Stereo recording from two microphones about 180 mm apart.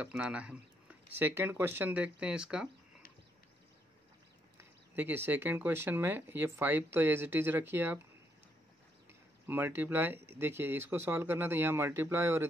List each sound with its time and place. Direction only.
0.0 s speech: 5° right (ahead or behind)
4.6 s speech: 10° right (ahead or behind)
9.5 s speech: 10° right (ahead or behind)